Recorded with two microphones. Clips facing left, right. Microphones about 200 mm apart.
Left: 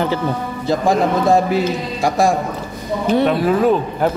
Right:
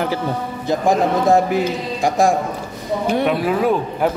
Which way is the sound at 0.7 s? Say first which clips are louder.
Left 1 dB; 15° right (ahead or behind).